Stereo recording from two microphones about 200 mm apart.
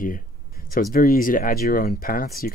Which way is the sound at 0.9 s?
45° left (ahead or behind).